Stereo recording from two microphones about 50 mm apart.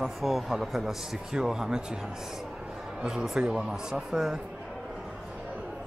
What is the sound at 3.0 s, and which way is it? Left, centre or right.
A man's voice, centre.